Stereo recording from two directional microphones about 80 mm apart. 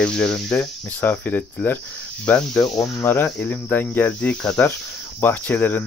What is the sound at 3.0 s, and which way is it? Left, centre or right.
Speech, left.